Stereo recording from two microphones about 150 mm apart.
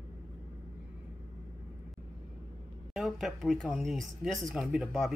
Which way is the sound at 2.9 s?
Centre (ahead or behind).